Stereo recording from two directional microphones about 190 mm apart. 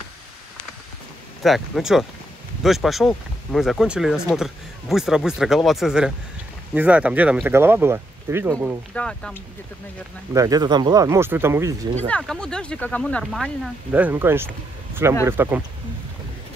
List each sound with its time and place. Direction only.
1.4 s speech: centre (ahead or behind)
8.9 s speech: 5° left (ahead or behind)
10.3 s speech: 20° right (ahead or behind)
12.1 s speech: 5° left (ahead or behind)
13.9 s speech: 10° right (ahead or behind)